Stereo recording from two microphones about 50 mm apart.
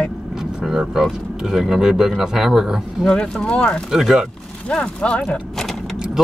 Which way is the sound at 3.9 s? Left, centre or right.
Centre.